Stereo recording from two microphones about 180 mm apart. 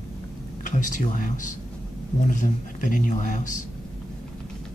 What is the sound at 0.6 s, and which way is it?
Speech, 45° left (ahead or behind).